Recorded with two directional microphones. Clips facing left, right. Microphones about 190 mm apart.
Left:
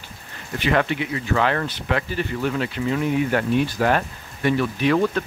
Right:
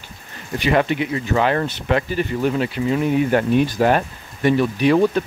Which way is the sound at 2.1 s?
15° right (ahead or behind).